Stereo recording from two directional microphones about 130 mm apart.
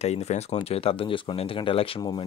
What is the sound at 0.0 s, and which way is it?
Speech, 55° left (ahead or behind).